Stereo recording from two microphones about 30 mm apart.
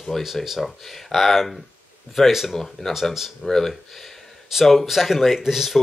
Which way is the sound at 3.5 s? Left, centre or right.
Centre.